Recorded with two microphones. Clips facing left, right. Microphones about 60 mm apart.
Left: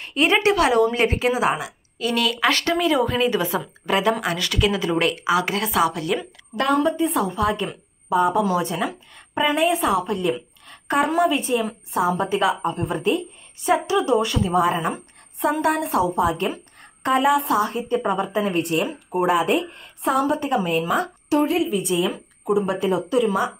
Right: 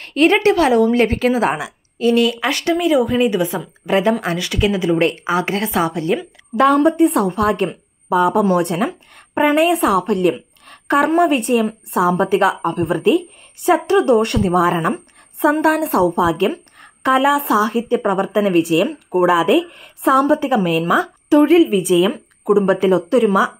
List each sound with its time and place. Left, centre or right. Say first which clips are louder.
0.6 s a woman's voice: right 4 dB; right
6.5 s a woman's voice: right 7 dB; right
8.5 s speech: right 5 dB; right
9.1 s a sound: right 6 dB; right
9.7 s a woman's voice: right 5 dB; right